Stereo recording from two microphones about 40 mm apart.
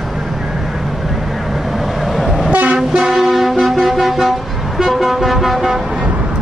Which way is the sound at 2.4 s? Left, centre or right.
Right.